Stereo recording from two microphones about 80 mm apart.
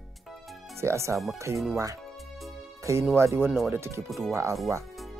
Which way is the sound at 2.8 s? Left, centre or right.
Right.